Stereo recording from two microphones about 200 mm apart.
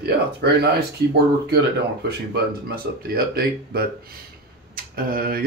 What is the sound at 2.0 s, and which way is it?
Speech, 50° right (ahead or behind).